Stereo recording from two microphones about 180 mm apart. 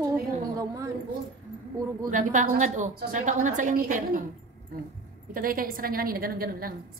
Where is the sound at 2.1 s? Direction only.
45° right (ahead or behind).